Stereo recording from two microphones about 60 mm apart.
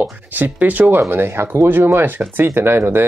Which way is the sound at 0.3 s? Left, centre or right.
Right.